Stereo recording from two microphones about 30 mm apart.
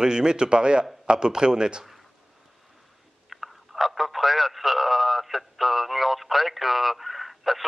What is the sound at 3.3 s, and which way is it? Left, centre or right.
Telephone, centre.